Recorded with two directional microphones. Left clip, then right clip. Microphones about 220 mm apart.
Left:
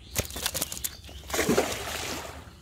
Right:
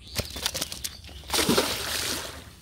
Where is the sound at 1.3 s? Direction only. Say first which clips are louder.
Right 2 dB; 40° right (ahead or behind).